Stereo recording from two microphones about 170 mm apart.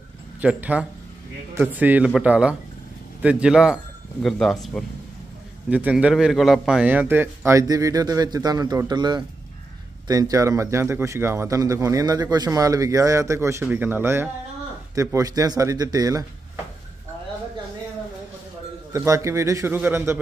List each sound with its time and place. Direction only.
0.4 s a man's voice: 10° right (ahead or behind)
5.7 s a man's voice: 10° right (ahead or behind)
18.9 s speech: 15° right (ahead or behind)